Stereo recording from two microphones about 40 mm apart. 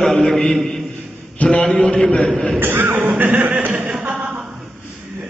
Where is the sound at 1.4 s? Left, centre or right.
Left.